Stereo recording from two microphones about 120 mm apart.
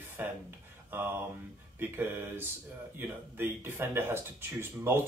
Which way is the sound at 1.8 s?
15° right (ahead or behind).